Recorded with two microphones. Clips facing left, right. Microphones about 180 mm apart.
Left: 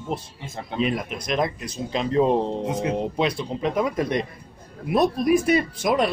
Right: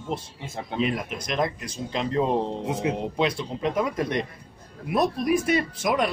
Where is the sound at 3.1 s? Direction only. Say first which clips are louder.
Left 1 dB; 20° left (ahead or behind).